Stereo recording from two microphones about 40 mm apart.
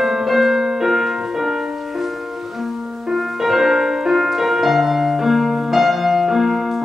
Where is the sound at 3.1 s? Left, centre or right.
Centre.